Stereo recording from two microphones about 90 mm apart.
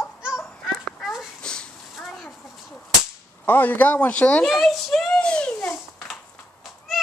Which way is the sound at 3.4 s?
20° left (ahead or behind).